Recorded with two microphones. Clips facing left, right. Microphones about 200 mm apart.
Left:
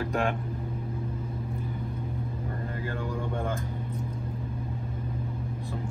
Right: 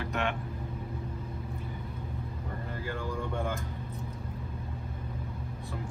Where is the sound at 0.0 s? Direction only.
35° left (ahead or behind).